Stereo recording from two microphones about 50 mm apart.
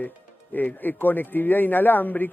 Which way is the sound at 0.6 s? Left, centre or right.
Left.